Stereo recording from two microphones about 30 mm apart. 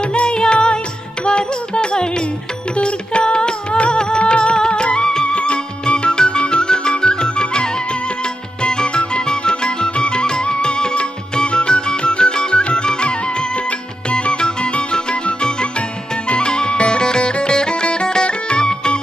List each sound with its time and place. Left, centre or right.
0.0 s music: left